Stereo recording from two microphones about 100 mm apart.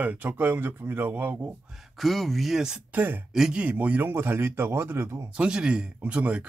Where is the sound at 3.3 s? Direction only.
5° right (ahead or behind); by 5.2 s 25° right (ahead or behind).